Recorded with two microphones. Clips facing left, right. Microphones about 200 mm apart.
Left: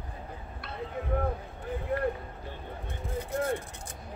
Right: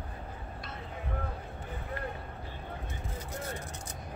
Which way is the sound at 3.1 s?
55° left (ahead or behind).